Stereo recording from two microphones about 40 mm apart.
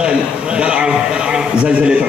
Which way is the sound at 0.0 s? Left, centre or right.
Right.